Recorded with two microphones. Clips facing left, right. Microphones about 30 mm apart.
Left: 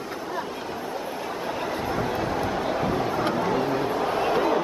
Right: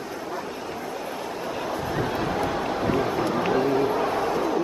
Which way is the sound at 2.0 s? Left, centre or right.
Centre.